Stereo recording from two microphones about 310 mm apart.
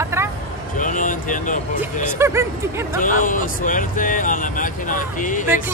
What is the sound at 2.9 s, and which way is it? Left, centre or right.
Speech, left.